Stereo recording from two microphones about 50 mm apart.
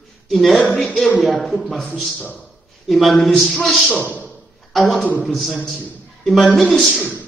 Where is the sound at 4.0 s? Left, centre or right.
Left.